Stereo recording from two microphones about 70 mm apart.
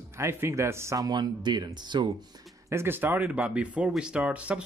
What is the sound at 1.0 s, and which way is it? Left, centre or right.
Speech, right.